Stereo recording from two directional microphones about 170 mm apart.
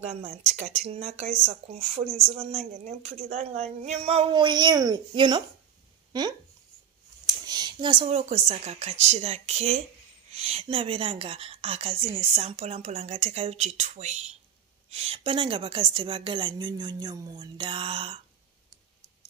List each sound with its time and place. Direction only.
0.0 s a woman's voice: 40° right (ahead or behind)
7.2 s a woman's voice: 25° right (ahead or behind)